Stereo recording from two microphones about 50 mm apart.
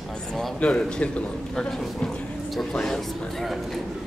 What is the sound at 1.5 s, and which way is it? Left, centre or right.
Speech, centre.